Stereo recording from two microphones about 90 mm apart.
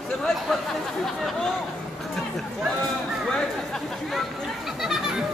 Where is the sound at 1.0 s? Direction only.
5° left (ahead or behind).